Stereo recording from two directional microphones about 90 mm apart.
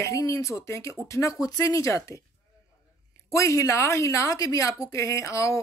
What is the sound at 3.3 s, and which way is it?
Speech, 35° left (ahead or behind).